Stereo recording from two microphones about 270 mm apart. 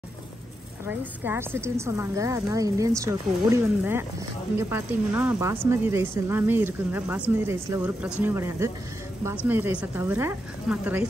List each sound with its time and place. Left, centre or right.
0.8 s a woman's voice: centre